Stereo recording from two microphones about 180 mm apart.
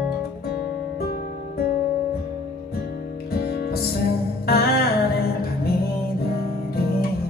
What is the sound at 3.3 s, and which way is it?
Music, 60° left (ahead or behind).